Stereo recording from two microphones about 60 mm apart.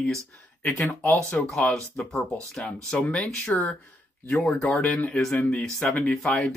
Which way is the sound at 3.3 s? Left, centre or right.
Left.